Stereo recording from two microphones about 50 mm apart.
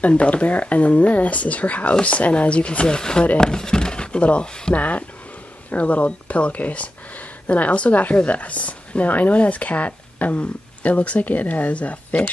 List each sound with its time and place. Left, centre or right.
0.0 s speech: left